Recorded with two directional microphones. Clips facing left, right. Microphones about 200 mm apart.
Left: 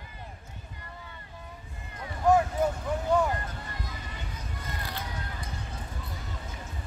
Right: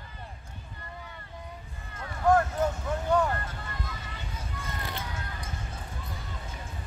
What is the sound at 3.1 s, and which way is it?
Vehicle, 10° left (ahead or behind).